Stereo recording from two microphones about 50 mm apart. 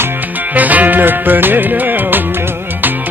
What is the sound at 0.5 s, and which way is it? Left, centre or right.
Music, right.